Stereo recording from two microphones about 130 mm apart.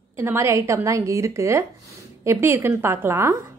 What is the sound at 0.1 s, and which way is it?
A woman's voice, 20° right (ahead or behind).